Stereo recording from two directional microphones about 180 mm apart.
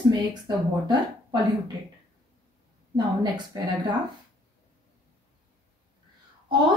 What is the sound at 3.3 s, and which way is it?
Speech, 25° right (ahead or behind).